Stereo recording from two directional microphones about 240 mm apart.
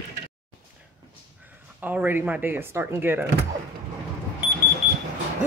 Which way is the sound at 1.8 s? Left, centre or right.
Centre.